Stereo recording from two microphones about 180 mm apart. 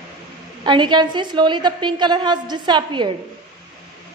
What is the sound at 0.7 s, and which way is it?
A woman's voice, 25° right (ahead or behind).